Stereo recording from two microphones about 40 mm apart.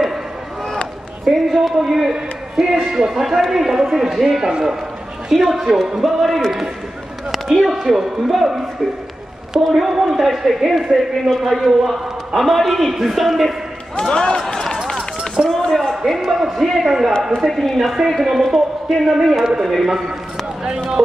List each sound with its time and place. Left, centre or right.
1.2 s a man's voice: centre
3.3 s a man's voice: centre
3.6 s speech: centre
5.3 s a man's voice: centre
7.2 s a sound: centre
7.6 s a man's voice: centre
9.5 s a man's voice: centre
13.9 s speech: centre
14.4 s run: centre
15.4 s speech: centre
15.7 s a sound: centre
16.1 s a man's voice: centre
19.4 s a man's voice: centre